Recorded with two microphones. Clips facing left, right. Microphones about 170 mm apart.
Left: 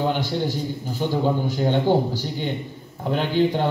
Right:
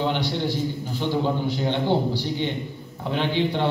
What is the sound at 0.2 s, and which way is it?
A man's voice, 45° left (ahead or behind).